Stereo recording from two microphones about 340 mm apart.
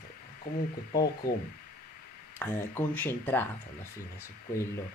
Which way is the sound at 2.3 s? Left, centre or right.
Centre.